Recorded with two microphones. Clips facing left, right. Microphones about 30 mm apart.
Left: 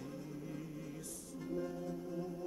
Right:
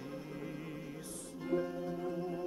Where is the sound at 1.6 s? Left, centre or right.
Right.